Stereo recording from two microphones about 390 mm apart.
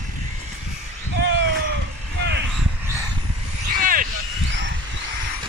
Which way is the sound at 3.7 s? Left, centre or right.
Right.